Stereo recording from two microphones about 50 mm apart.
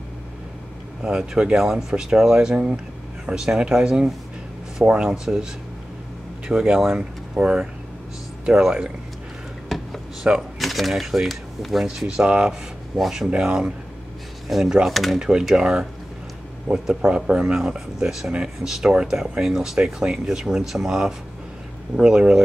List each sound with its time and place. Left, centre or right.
1.0 s speech: centre
6.7 s speech: centre
7.4 s speech: right
9.7 s a sound: centre
10.3 s speech: right
10.6 s speech: centre
14.9 s speech: centre
15.1 s speech: centre